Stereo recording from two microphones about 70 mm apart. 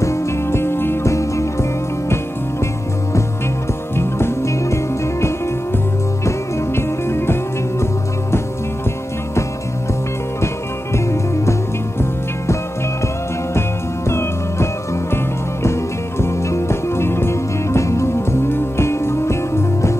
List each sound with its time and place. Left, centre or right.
0.0 s music: left
1.1 s music: left
3.9 s music: left
10.4 s music: left
13.5 s music: left